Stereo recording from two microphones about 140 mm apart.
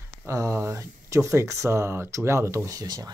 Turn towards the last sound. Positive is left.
turn(degrees=-30)  # may be behind; listen again after turning